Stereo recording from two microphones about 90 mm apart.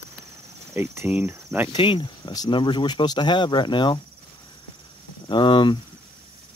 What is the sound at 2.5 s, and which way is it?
Speech, 60° left (ahead or behind).